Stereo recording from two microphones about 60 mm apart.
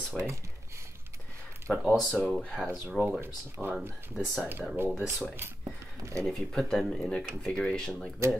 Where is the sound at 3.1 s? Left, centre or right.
Right.